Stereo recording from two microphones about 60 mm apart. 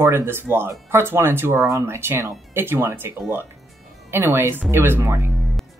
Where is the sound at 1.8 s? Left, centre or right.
Right.